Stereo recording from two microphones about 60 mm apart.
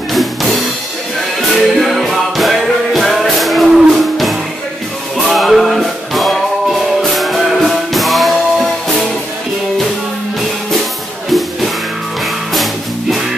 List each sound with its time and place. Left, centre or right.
0.1 s music: centre